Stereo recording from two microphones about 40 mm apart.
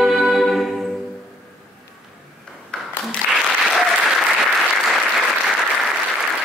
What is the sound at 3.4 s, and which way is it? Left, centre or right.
Applause, centre.